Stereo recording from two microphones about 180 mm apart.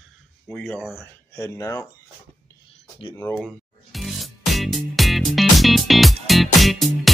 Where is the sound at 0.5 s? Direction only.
10° left (ahead or behind).